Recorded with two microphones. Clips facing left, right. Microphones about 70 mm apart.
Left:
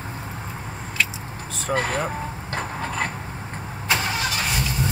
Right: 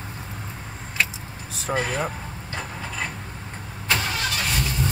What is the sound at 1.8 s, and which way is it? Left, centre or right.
Speech, left.